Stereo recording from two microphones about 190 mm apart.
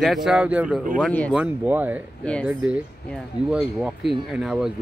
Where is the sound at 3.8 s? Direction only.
Centre (ahead or behind).